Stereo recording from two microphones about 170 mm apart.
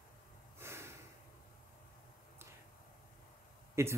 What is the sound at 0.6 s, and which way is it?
Snort, 15° right (ahead or behind).